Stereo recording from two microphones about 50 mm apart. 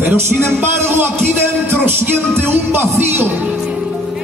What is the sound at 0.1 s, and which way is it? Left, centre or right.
Speech, right.